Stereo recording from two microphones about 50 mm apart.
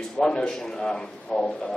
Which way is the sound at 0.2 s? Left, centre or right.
Centre.